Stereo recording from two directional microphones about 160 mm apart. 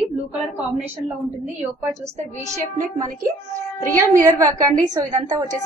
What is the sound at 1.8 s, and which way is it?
Speech, 20° right (ahead or behind).